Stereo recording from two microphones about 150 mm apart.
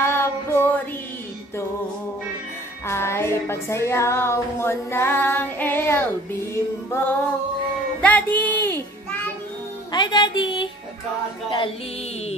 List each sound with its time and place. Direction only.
0.0 s a sound: 15° left (ahead or behind)
2.9 s music: 15° left (ahead or behind)
9.9 s music: 30° left (ahead or behind)